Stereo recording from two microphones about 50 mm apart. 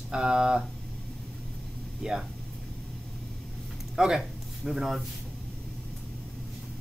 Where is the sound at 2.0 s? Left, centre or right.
Centre.